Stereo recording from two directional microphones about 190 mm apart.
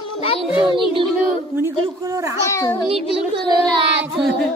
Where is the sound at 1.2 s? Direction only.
10° right (ahead or behind).